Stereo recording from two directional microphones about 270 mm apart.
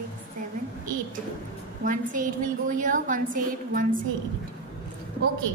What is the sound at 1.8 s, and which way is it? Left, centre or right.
A woman's voice, right.